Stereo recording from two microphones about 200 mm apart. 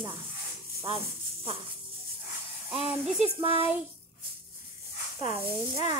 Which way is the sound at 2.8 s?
30° right (ahead or behind).